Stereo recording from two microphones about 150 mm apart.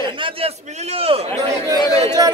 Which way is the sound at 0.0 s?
35° right (ahead or behind).